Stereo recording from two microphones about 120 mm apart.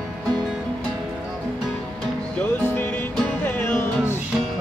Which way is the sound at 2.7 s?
15° left (ahead or behind).